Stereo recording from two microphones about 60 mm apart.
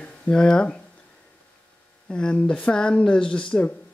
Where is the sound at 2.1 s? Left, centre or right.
Centre.